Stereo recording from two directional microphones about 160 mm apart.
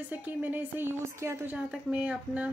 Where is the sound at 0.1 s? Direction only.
10° right (ahead or behind).